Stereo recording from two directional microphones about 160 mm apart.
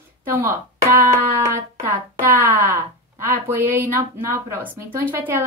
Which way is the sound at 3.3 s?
10° right (ahead or behind).